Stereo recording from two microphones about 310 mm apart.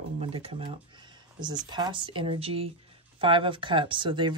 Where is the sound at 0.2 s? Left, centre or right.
Centre.